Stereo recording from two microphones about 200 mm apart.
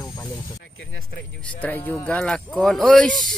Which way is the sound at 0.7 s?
80° left.